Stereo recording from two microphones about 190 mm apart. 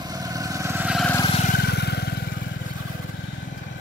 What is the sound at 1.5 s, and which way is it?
Vehicle, 60° left (ahead or behind).